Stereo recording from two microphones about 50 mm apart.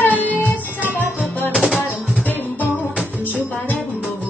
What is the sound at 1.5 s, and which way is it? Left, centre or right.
Music, centre.